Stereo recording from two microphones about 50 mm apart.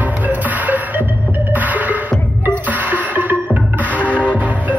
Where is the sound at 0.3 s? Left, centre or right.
Right.